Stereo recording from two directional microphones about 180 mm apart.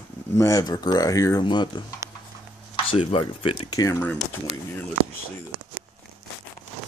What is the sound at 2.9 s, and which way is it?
Speech, 30° left (ahead or behind).